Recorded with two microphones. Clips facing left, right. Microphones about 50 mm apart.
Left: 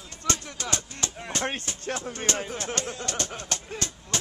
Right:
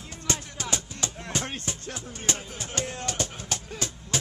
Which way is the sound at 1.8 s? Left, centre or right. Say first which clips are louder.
Left 6 dB; left.